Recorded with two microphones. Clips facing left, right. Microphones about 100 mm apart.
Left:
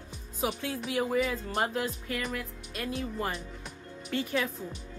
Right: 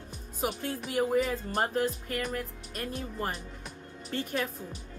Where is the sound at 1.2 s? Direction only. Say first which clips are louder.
Right 1 dB; 40° right (ahead or behind).